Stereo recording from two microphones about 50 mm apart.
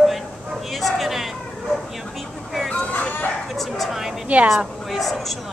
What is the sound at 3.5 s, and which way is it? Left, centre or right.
Bow-wow, centre.